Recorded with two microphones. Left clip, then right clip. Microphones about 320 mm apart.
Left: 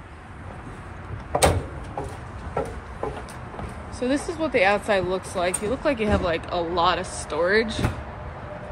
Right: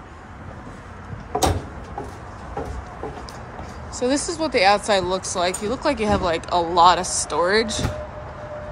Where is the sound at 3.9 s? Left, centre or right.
Centre.